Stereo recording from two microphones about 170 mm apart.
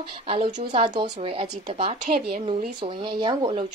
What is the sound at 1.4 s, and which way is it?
Speech, 35° right (ahead or behind).